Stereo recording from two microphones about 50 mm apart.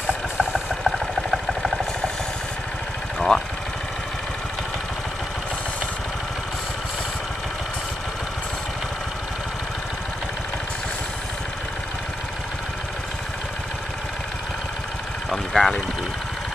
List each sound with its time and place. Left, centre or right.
0.0 s engine: centre
0.8 s vehicle: centre
3.2 s vehicle: centre
15.2 s vehicle: centre